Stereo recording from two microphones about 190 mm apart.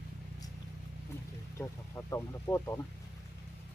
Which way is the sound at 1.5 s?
15° left (ahead or behind).